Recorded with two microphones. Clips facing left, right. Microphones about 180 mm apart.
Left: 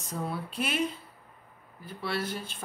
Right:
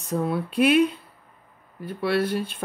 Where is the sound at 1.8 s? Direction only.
60° right (ahead or behind).